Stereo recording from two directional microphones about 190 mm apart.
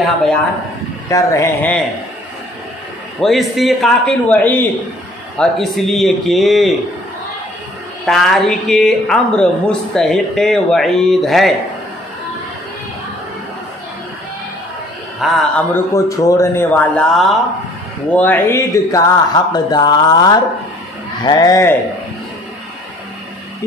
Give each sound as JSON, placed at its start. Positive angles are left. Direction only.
{"t": 1.0, "sound": "a man's voice", "side_deg": 15}
{"t": 3.2, "sound": "speech", "side_deg": 0}
{"t": 8.0, "sound": "speech", "side_deg": 0}
{"t": 15.1, "sound": "speech", "side_deg": 0}
{"t": 15.7, "sound": "a man's voice", "side_deg": 15}